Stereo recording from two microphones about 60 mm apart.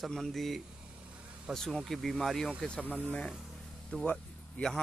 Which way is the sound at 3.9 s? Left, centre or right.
Centre.